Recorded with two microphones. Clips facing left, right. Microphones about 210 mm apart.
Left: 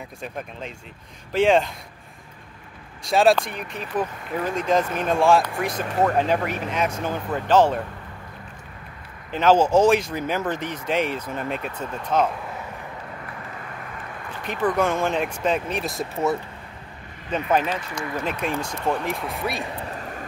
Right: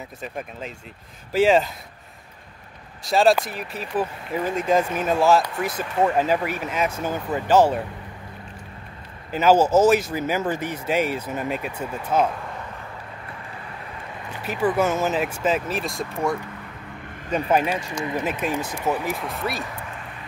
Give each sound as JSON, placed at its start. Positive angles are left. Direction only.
{"t": 0.2, "sound": "speech", "side_deg": -5}
{"t": 3.0, "sound": "speech", "side_deg": 0}
{"t": 9.3, "sound": "speech", "side_deg": -5}
{"t": 14.4, "sound": "speech", "side_deg": -5}
{"t": 17.5, "sound": "speech", "side_deg": -10}
{"t": 19.6, "sound": "a sound", "side_deg": 30}